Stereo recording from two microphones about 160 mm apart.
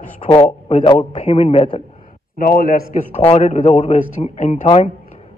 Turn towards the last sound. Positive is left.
turn(degrees=45)  # may be behind; listen again after turning